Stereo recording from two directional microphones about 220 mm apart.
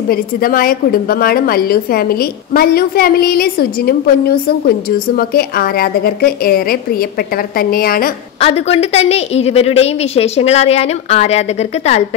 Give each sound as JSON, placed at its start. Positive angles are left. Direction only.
{"t": 0.1, "sound": "a woman's voice", "side_deg": 40}
{"t": 8.4, "sound": "a woman's voice", "side_deg": 30}